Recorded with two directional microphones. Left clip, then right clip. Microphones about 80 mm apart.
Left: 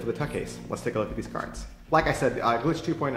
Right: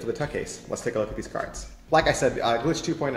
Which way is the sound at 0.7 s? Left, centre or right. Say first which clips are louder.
Right 2 dB; left.